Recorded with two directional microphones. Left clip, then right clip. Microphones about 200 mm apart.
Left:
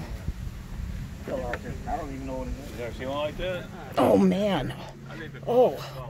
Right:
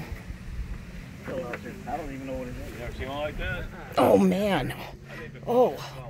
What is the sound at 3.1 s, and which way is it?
Speech, 50° left (ahead or behind).